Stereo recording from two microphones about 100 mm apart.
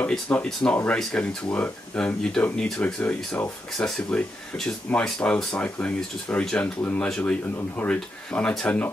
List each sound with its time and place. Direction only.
0.1 s speech: 5° left (ahead or behind)